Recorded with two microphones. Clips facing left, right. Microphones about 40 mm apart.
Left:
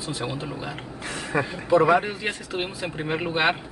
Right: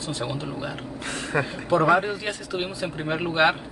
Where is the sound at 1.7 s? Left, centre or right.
Centre.